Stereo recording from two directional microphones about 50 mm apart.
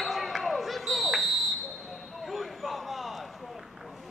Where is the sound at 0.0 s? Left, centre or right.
Centre.